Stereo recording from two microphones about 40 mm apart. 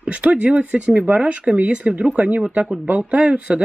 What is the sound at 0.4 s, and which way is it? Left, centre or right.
Speech, right.